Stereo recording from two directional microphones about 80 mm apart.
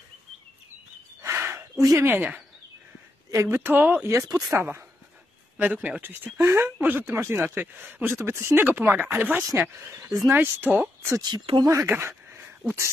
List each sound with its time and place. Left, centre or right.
1.2 s a sound: right
1.8 s speech: right
2.0 s speech: right
3.3 s a woman's voice: right
5.6 s speech: centre
11.1 s speech: right
11.6 s speech: right